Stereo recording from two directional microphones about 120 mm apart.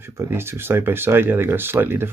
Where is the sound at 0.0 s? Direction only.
20° right (ahead or behind).